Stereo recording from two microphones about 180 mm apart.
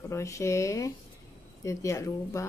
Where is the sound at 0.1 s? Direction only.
15° left (ahead or behind).